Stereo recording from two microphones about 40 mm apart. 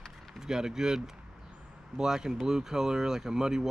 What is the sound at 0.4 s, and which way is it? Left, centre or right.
Speech, centre.